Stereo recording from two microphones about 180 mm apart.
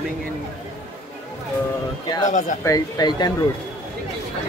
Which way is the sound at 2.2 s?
45° left (ahead or behind).